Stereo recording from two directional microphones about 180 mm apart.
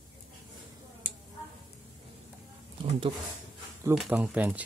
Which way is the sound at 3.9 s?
5° right (ahead or behind).